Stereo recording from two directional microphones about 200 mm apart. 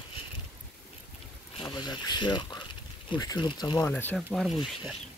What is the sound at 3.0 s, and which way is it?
Speech, 20° left (ahead or behind).